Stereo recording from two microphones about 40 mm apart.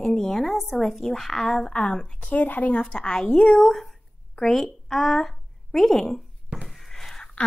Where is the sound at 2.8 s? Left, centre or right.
Centre.